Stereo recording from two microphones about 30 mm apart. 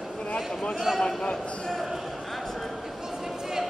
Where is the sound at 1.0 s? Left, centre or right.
Left.